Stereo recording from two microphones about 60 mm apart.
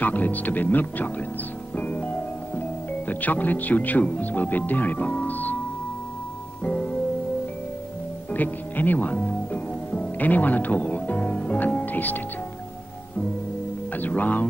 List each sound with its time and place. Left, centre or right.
0.0 s speech: left
1.8 s music: left
3.1 s speech: left
6.6 s music: left
8.3 s music: left
13.9 s speech: left